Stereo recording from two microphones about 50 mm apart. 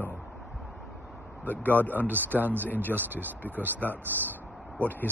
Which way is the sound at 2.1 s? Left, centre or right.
Right.